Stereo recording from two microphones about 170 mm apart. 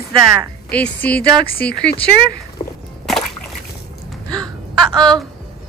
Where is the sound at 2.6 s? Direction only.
45° left (ahead or behind).